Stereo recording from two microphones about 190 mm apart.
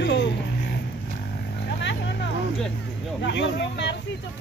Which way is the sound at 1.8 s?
65° left (ahead or behind).